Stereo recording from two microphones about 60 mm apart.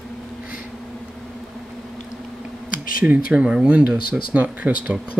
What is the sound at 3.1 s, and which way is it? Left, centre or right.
Speech, centre.